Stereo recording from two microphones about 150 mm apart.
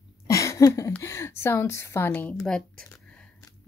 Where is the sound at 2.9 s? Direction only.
10° left (ahead or behind).